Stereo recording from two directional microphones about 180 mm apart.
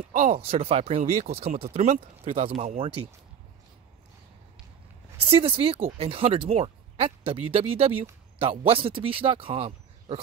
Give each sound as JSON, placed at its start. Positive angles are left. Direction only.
{"t": 0.1, "sound": "speech", "side_deg": -45}
{"t": 5.1, "sound": "speech", "side_deg": -35}